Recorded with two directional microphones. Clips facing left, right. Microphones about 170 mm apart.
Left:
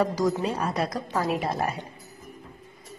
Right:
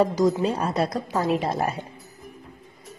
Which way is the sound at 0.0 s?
25° right (ahead or behind).